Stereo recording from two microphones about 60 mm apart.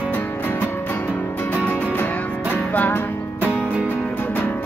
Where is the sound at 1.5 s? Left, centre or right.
Left.